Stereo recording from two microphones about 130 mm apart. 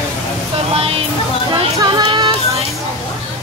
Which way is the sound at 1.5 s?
35° right (ahead or behind).